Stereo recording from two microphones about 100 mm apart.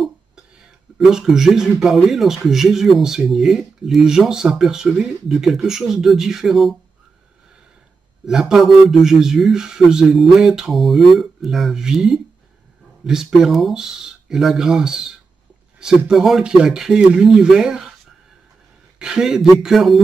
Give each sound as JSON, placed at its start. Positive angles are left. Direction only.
{"t": 0.9, "sound": "a man's voice", "side_deg": 0}
{"t": 8.3, "sound": "a man's voice", "side_deg": -5}
{"t": 18.9, "sound": "a man's voice", "side_deg": -5}